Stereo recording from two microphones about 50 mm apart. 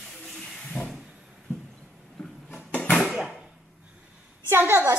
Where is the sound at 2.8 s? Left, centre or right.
Left.